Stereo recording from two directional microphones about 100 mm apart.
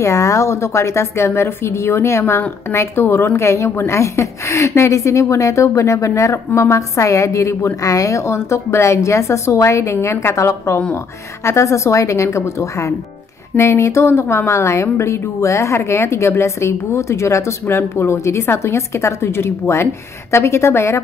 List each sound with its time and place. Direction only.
0.0 s a woman's voice: 30° left (ahead or behind)